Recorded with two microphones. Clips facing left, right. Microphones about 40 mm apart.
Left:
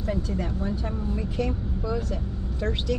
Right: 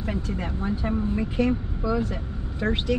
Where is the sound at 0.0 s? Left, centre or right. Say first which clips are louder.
Left 1 dB; right.